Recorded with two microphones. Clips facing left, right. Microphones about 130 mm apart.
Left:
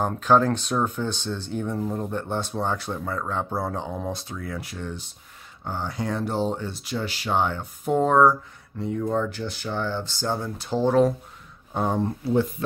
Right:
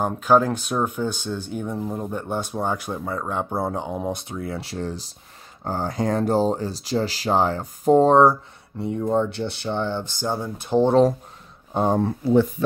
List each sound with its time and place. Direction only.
0.0 s speech: 10° right (ahead or behind); by 12.0 s 25° right (ahead or behind)